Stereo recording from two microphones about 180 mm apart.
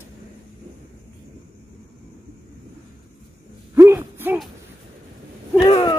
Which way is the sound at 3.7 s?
15° right (ahead or behind).